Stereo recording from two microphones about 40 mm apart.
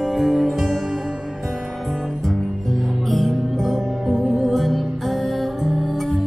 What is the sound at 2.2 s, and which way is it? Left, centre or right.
Music, centre.